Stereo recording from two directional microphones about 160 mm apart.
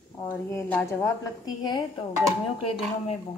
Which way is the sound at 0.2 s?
15° left (ahead or behind).